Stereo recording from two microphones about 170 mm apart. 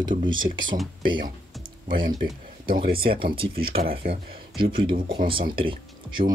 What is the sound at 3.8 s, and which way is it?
Speech, 60° right (ahead or behind).